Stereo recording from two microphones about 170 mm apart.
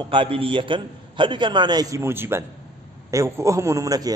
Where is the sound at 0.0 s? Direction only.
30° right (ahead or behind).